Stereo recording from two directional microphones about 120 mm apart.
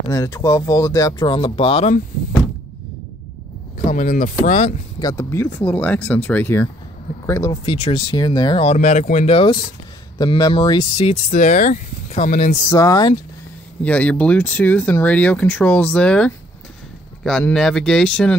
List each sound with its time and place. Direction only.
0.1 s speech: 25° left (ahead or behind)
1.3 s speech: 45° left (ahead or behind)
3.9 s speech: 90° left
5.0 s speech: 25° left (ahead or behind)
7.6 s speech: 50° left (ahead or behind)
8.6 s speech: 85° left
9.3 s speech: 45° left (ahead or behind)
10.1 s speech: 35° left (ahead or behind)
11.2 s speech: 90° left
12.6 s speech: 30° left (ahead or behind)
13.8 s speech: 10° left (ahead or behind)